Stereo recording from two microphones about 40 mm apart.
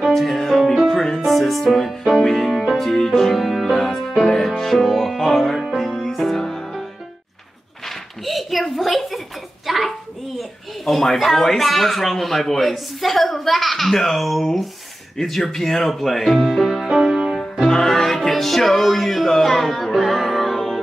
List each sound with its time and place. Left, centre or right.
0.0 s music: centre
7.8 s a sound: centre
10.9 s speech: centre
17.6 s music: centre